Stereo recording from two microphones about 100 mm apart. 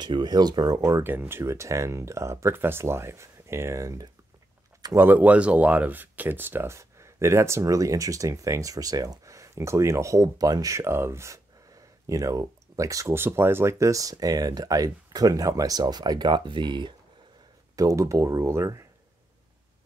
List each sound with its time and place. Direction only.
0.0 s speech: 45° right (ahead or behind)
4.9 s speech: 20° right (ahead or behind); by 16.9 s 50° right (ahead or behind)
17.7 s speech: 30° right (ahead or behind)